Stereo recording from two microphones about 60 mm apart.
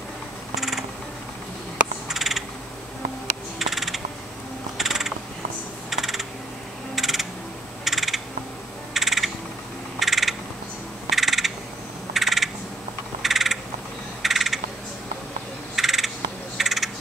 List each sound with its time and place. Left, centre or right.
0.6 s music: centre
2.0 s crow: centre
3.5 s a sound: centre
7.0 s music: centre
7.8 s a sound: centre
9.9 s frog: centre
13.2 s a sound: centre
15.7 s bird: centre
16.5 s frog: centre